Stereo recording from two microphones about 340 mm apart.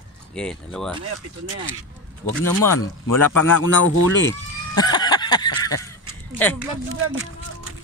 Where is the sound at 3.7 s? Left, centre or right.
Left.